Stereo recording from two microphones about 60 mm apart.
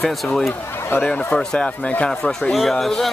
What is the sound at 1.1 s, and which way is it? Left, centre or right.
Speech, left.